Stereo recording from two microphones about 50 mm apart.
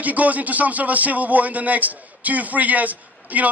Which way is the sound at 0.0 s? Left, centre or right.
Right.